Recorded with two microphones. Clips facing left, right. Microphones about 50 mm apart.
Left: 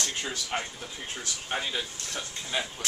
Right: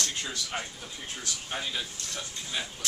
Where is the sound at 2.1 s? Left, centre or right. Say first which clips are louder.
Left 3 dB; left.